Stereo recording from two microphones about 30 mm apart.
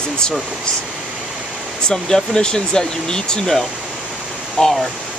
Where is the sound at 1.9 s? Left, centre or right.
Left.